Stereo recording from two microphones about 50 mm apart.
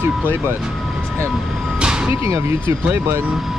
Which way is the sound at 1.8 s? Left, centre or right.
Centre.